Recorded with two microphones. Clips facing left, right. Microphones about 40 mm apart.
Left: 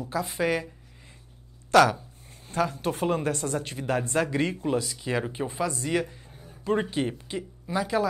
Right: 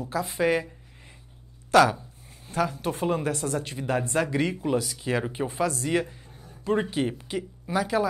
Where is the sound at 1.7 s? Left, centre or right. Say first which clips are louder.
Even; centre.